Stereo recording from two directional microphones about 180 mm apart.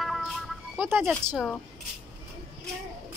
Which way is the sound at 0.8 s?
10° right (ahead or behind).